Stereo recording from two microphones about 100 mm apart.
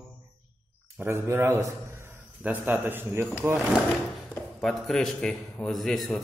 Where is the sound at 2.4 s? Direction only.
15° right (ahead or behind).